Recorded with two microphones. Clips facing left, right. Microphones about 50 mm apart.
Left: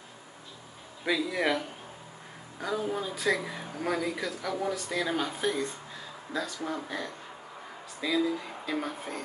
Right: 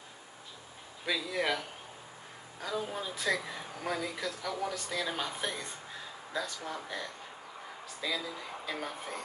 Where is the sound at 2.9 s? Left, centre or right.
Centre.